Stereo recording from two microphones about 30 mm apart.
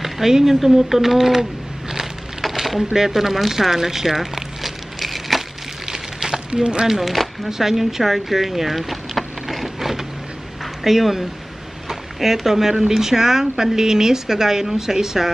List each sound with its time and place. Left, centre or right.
0.5 s speech: centre
5.0 s wood: centre
5.9 s a sound: centre
6.5 s speech: right
6.9 s speech: centre
10.6 s a sound: centre
11.9 s a woman's voice: centre